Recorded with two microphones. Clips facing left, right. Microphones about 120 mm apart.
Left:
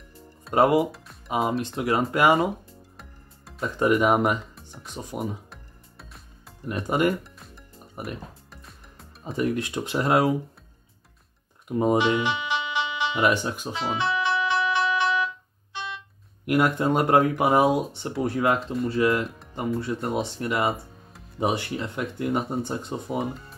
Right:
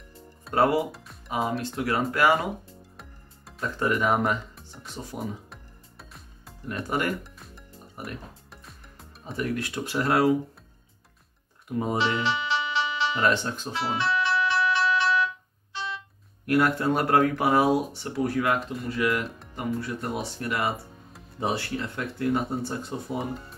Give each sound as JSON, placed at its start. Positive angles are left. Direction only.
{"t": 0.6, "sound": "speech", "side_deg": 20}
{"t": 3.0, "sound": "music", "side_deg": 0}
{"t": 3.6, "sound": "speech", "side_deg": 15}
{"t": 4.6, "sound": "music", "side_deg": 5}
{"t": 4.8, "sound": "speech", "side_deg": 15}
{"t": 5.5, "sound": "music", "side_deg": 0}
{"t": 6.7, "sound": "speech", "side_deg": 20}
{"t": 8.5, "sound": "music", "side_deg": 0}
{"t": 9.4, "sound": "speech", "side_deg": 20}
{"t": 11.7, "sound": "music", "side_deg": 20}
{"t": 16.4, "sound": "speech", "side_deg": 20}